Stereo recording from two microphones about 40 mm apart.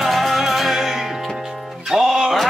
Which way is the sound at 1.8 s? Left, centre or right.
Centre.